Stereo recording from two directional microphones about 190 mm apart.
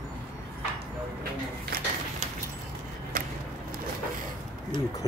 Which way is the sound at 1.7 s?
55° right (ahead or behind).